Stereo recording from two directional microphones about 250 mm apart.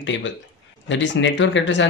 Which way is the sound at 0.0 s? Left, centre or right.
Left.